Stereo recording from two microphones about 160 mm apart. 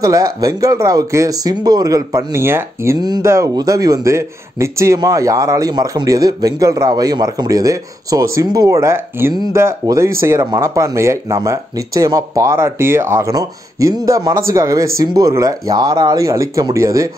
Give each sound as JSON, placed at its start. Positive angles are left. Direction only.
{"t": 0.0, "sound": "speech", "side_deg": -20}